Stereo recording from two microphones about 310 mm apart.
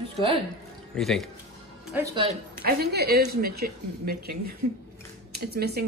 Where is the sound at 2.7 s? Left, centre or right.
Right.